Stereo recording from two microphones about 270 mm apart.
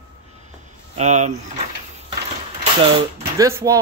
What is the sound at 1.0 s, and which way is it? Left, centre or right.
Speech, right.